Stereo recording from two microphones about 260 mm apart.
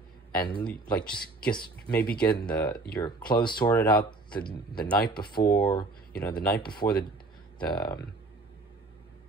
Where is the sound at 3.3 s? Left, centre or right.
Centre.